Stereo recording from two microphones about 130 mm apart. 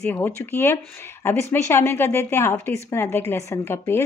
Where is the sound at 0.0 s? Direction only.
15° left (ahead or behind).